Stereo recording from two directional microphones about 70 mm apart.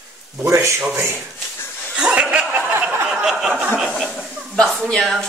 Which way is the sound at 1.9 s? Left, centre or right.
Centre.